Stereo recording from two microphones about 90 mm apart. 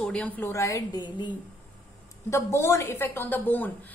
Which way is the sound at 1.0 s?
60° left (ahead or behind).